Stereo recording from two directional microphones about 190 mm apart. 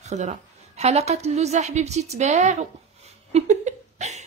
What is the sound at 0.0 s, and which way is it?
Speech, 35° right (ahead or behind).